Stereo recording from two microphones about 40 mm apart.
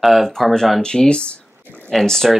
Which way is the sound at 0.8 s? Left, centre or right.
Centre.